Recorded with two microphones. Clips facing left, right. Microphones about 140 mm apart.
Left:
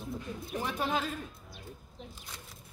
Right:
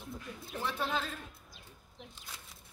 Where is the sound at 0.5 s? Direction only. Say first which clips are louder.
Left 3 dB; 15° left (ahead or behind).